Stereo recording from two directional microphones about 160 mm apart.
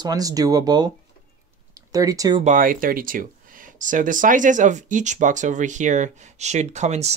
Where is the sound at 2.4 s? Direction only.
55° right (ahead or behind).